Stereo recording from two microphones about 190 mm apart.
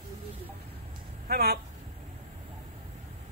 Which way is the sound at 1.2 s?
55° right (ahead or behind).